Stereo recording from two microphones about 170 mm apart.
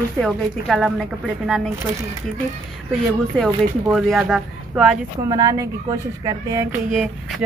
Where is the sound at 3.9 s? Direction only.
Centre (ahead or behind).